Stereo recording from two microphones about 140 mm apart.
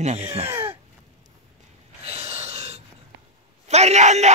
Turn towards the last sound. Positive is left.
turn(degrees=-55)  # may be behind; listen again after turning